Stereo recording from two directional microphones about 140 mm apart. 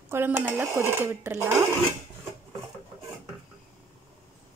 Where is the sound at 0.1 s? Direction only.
15° right (ahead or behind).